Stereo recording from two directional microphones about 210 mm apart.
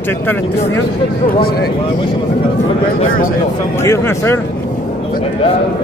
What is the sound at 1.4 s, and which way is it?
Speech, 50° left (ahead or behind).